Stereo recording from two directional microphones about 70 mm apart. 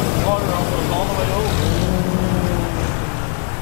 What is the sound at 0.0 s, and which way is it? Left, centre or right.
Vehicle, left.